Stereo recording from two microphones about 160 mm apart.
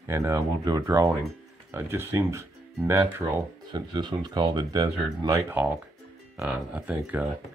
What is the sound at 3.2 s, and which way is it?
Speech, 35° right (ahead or behind).